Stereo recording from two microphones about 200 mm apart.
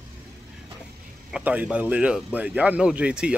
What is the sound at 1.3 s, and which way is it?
Speech, 5° right (ahead or behind).